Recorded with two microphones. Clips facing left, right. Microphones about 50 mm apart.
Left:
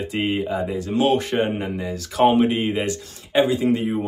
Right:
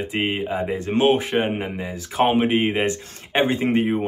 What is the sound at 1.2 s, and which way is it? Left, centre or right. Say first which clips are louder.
Speech: even; centre.